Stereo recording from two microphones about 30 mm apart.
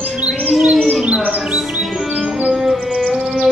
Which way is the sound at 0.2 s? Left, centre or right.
Right.